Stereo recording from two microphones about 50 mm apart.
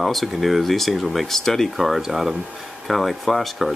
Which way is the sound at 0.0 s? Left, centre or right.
Centre.